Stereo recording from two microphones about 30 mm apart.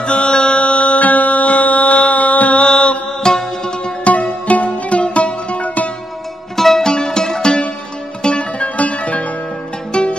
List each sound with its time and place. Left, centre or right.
0.0 s music: left
0.6 s music: left
2.6 s mantra: left
3.2 s music: left
4.0 s music: left
6.5 s music: centre
6.8 s music: left
8.2 s music: left
8.6 s music: left
9.9 s music: left